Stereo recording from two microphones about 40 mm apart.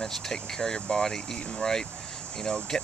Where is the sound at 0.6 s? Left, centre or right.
Left.